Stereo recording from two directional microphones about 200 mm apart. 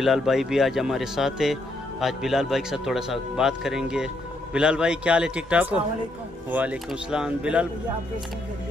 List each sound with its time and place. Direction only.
0.0 s speech: centre (ahead or behind)